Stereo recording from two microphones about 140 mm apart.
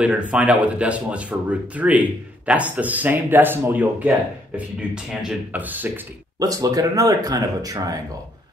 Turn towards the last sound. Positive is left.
turn(degrees=-25)  # may be behind; listen again after turning